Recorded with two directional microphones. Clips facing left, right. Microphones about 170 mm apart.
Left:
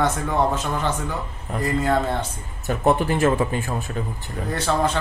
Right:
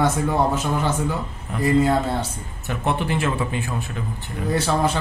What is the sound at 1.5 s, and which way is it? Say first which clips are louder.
Speech: right 3 dB; 40° left (ahead or behind).